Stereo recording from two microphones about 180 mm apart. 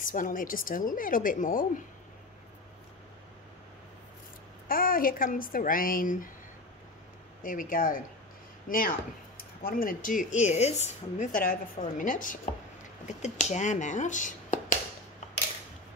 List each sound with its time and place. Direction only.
0.0 s a woman's voice: 50° left (ahead or behind)
4.6 s a woman's voice: 50° left (ahead or behind)
7.4 s a woman's voice: 50° left (ahead or behind)